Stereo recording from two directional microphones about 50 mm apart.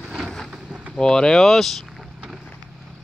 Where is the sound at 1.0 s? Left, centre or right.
Centre.